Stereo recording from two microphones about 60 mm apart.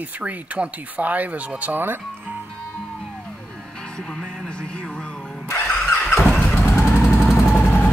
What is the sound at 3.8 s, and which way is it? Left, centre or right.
Music, centre.